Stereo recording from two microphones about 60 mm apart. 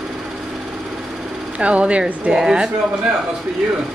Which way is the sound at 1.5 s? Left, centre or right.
Centre.